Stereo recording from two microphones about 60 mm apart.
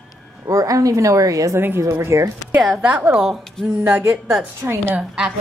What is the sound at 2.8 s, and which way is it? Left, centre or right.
Speech, right.